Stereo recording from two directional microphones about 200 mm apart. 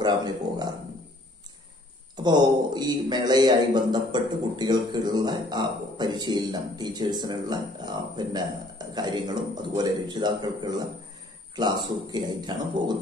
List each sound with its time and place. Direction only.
0.0 s a man's voice: 20° right (ahead or behind)
2.2 s a man's voice: 20° right (ahead or behind)